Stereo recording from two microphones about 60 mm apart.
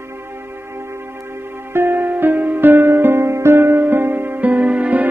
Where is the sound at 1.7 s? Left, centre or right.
Right.